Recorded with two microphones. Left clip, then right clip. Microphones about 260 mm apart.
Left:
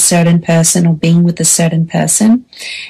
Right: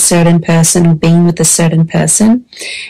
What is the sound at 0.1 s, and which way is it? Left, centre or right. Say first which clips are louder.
Speech: right 3 dB; right.